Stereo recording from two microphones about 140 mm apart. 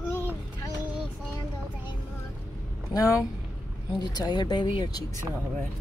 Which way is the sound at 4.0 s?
30° left (ahead or behind).